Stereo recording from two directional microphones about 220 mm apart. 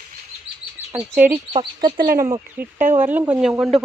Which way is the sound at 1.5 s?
20° right (ahead or behind).